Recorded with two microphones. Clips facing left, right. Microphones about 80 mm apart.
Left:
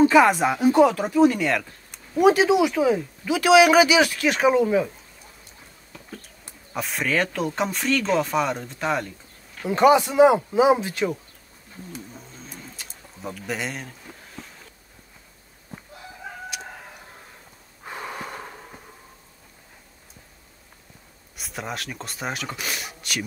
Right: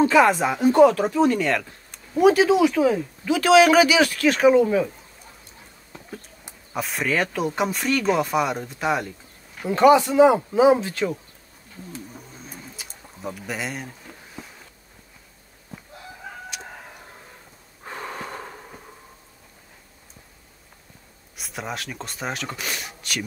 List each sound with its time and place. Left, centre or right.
0.0 s speech: centre
2.2 s speech: left
5.9 s a sound: right
6.7 s speech: centre
9.7 s speech: centre
12.4 s bird: centre
13.5 s a sound: centre
17.8 s gasp: centre
21.4 s speech: centre